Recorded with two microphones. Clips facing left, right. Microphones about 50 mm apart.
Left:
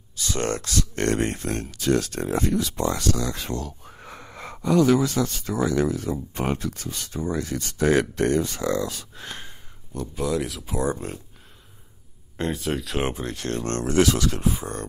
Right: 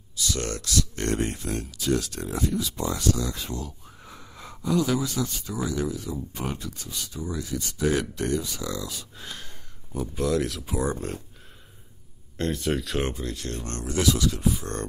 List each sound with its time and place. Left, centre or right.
0.1 s a sound: left
1.0 s speech: left
9.9 s speech: centre
12.5 s speech: centre
13.1 s speech: left
13.5 s speech: left